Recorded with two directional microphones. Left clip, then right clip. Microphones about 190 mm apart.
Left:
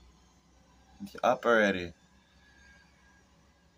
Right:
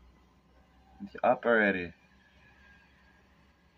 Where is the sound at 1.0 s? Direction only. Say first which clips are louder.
Even; 20° left (ahead or behind).